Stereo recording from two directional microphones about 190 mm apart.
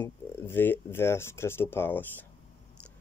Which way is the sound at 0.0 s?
10° left (ahead or behind).